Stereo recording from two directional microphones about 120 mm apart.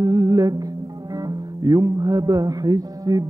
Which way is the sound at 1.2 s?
30° right (ahead or behind).